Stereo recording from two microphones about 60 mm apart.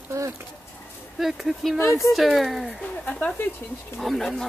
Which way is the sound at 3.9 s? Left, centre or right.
Centre.